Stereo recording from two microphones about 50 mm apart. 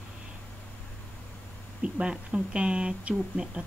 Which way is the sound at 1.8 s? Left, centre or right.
Centre.